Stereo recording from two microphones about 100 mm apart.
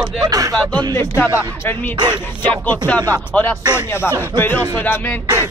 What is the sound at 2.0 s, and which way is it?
Speech, 50° right (ahead or behind).